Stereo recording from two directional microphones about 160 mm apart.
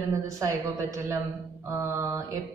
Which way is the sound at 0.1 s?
20° right (ahead or behind).